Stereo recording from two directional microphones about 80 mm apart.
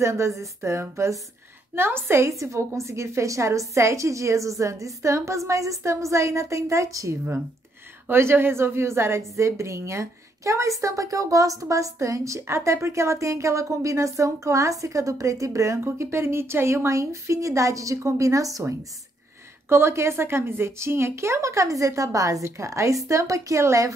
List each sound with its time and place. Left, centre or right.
0.0 s a woman's voice: right
8.1 s a woman's voice: right